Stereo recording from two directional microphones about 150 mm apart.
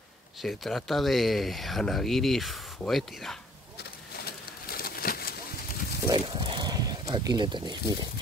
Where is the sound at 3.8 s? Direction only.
90° left.